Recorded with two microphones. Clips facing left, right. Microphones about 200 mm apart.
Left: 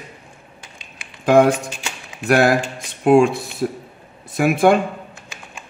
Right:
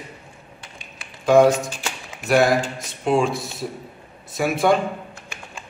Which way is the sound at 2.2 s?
60° left (ahead or behind).